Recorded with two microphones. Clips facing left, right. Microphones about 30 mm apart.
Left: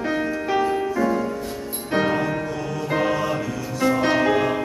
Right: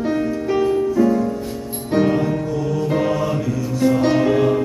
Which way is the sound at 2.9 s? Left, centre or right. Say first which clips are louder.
Even; centre.